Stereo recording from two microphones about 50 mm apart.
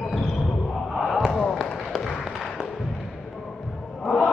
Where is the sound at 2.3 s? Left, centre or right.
Centre.